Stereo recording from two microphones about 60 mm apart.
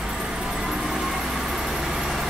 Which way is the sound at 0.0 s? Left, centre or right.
Centre.